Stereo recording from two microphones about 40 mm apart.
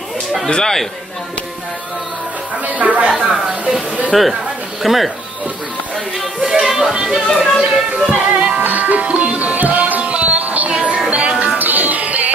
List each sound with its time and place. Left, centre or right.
0.5 s speech: centre
2.6 s speech: right
3.2 s speech: centre
4.1 s speech: centre
6.8 s speech: centre
7.2 s speech: left
8.1 s music: right
8.6 s music: right
10.0 s music: right
10.7 s music: right
11.5 s music: right